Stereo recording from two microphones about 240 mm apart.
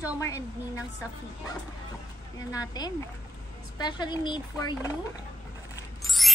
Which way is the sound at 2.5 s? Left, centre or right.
Centre.